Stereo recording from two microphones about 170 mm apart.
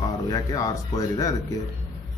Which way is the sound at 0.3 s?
20° left (ahead or behind).